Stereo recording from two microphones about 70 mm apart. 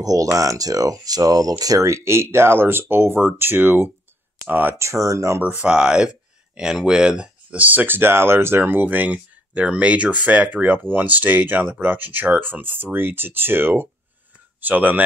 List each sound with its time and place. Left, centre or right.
0.0 s speech: right
4.7 s speech: right
5.4 s speech: centre